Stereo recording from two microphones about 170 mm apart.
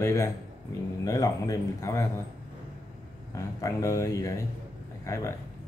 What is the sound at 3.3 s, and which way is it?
Speech, 20° left (ahead or behind).